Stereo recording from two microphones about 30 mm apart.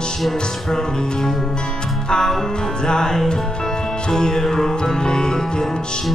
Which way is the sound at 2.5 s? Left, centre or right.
Left.